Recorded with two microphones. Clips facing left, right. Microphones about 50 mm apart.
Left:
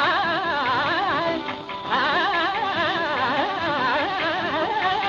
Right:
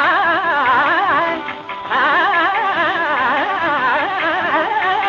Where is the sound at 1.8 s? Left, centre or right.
Right.